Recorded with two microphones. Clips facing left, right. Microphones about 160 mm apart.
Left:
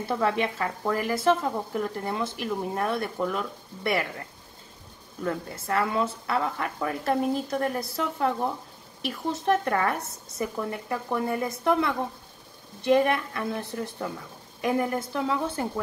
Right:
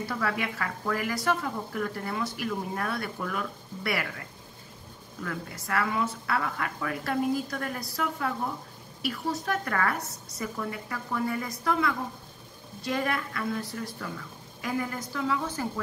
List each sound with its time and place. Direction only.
0.0 s speech: 25° left (ahead or behind)
5.2 s speech: 30° left (ahead or behind)
9.3 s speech: 25° left (ahead or behind)